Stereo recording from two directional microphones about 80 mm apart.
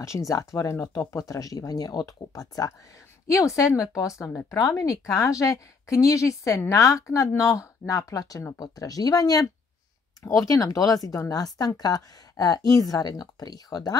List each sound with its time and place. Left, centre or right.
0.3 s a woman's voice: left